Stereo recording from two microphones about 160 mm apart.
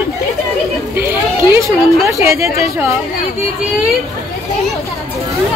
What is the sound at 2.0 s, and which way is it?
Speech, 20° right (ahead or behind).